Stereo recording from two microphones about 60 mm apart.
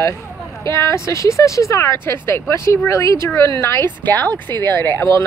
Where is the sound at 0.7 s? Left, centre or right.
Left.